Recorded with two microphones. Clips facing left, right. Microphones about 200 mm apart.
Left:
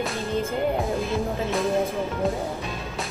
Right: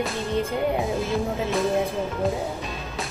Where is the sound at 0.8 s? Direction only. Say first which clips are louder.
Right 1 dB; centre (ahead or behind).